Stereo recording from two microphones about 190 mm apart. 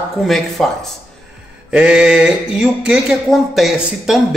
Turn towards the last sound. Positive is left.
turn(degrees=0)  # may be behind; listen again after turning